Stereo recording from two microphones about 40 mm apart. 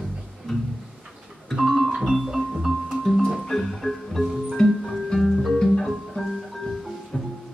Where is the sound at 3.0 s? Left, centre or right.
Centre.